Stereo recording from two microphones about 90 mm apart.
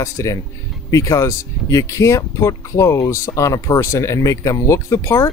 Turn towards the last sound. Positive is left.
turn(degrees=30)  # may be behind; listen again after turning